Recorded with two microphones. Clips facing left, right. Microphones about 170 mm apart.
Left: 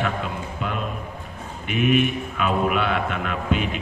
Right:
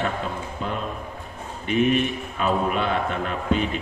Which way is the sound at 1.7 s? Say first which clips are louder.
Even; 35° right (ahead or behind).